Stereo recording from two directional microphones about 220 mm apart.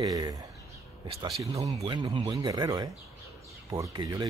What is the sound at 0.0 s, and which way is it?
Speech, 15° right (ahead or behind).